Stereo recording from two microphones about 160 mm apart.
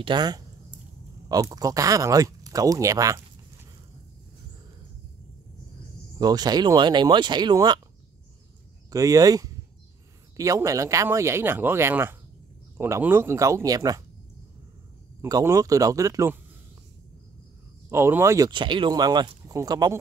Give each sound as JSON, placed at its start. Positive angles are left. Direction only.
{"t": 0.0, "sound": "speech", "side_deg": -25}
{"t": 6.1, "sound": "speech", "side_deg": -25}
{"t": 8.9, "sound": "speech", "side_deg": -20}
{"t": 15.2, "sound": "speech", "side_deg": -20}
{"t": 17.8, "sound": "speech", "side_deg": -15}
{"t": 18.5, "sound": "speech", "side_deg": -30}